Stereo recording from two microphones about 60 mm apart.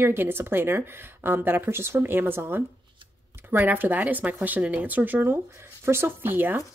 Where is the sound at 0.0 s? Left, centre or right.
Right.